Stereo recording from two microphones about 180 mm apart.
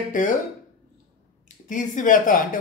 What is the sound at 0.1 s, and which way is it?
Speech, 45° left (ahead or behind).